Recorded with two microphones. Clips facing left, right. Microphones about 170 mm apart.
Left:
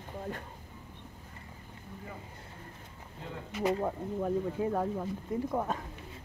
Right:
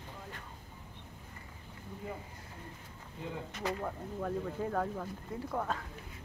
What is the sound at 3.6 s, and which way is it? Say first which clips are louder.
Speech: left 7 dB; 20° left (ahead or behind).